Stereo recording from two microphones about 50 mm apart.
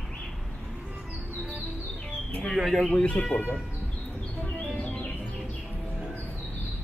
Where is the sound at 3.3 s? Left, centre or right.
Left.